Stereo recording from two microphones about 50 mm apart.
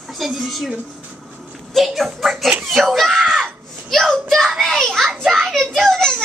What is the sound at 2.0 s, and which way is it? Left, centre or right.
A woman's voice, centre.